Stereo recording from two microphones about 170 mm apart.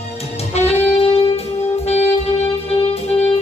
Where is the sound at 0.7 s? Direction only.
35° left (ahead or behind).